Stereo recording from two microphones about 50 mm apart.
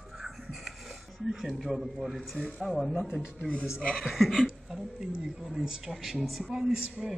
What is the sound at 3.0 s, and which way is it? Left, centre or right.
Speech, centre.